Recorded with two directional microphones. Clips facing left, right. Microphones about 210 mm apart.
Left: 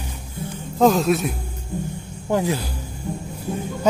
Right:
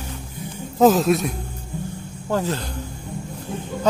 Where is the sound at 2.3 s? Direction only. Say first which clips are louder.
Left 2 dB; 15° left (ahead or behind).